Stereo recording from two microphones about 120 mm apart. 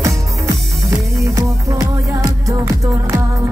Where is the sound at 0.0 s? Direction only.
25° right (ahead or behind).